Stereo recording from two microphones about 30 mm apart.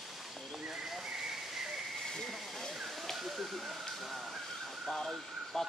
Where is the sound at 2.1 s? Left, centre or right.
Centre.